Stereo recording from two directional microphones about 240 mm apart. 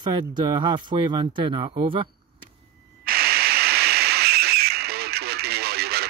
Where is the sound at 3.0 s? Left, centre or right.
Right.